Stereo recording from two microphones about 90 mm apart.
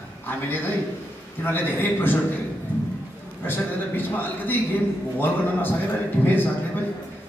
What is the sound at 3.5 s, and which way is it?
A man's voice, 20° left (ahead or behind).